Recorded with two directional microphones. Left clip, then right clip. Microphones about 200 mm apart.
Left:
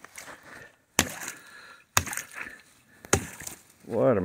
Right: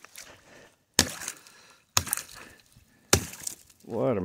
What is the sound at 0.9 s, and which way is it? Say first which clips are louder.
Chop: right 1 dB; centre (ahead or behind).